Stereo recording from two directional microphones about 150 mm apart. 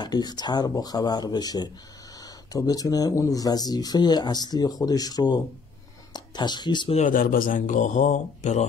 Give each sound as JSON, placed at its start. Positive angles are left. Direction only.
{"t": 0.0, "sound": "speech", "side_deg": 25}
{"t": 7.0, "sound": "a man's voice", "side_deg": 65}